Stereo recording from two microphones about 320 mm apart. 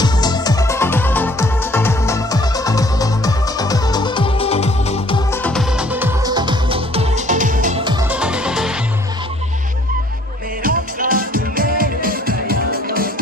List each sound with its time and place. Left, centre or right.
0.0 s music: centre
5.3 s music: centre
8.2 s music: centre
10.6 s music: right